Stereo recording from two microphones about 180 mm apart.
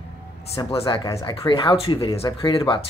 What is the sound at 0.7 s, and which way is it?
Speech, 25° left (ahead or behind).